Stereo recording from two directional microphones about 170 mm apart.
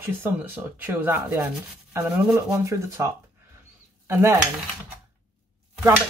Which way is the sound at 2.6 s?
15° right (ahead or behind).